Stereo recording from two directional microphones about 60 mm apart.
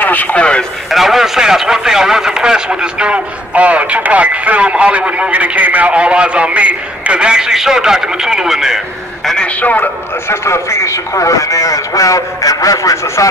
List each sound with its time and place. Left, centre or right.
0.0 s a man's voice: left
0.8 s a man's voice: centre
9.2 s a man's voice: centre
9.6 s a man's voice: left
10.3 s a man's voice: left